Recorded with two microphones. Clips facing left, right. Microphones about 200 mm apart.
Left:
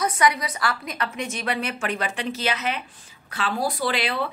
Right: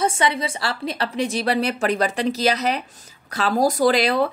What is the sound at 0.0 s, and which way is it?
A woman's voice, 25° right (ahead or behind).